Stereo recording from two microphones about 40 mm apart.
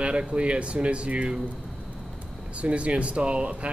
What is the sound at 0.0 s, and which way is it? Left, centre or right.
Speech, right.